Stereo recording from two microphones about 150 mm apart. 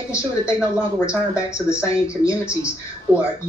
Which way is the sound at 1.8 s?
20° left (ahead or behind).